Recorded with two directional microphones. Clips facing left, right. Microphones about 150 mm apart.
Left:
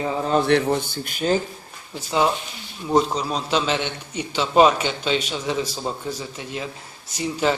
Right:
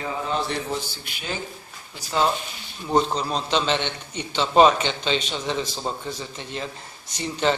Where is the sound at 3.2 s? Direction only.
5° left (ahead or behind).